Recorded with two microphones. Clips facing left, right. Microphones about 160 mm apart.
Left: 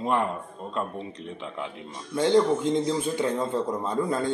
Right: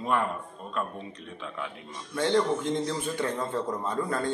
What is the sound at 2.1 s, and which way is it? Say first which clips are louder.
A man's voice: left 4 dB; 15° left (ahead or behind).